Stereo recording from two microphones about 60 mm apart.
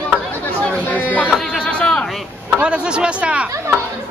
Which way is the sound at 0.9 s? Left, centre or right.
Left.